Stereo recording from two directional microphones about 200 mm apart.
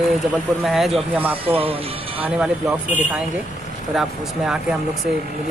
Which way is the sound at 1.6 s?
30° right (ahead or behind).